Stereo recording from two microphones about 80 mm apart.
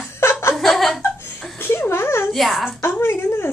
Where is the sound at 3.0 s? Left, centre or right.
Left.